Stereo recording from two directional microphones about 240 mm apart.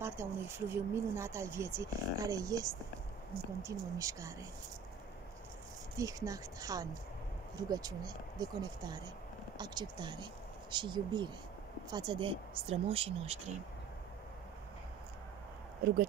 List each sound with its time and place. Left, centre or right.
0.0 s speech: centre
5.9 s speech: centre
15.8 s speech: right